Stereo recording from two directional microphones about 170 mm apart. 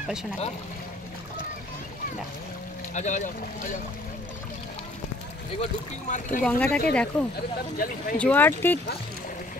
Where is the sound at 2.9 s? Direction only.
45° left (ahead or behind).